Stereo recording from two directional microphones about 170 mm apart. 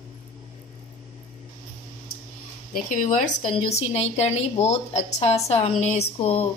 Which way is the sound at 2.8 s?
50° left (ahead or behind).